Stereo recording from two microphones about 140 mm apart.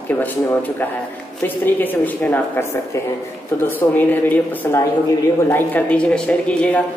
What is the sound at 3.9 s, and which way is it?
A woman's voice, 15° left (ahead or behind).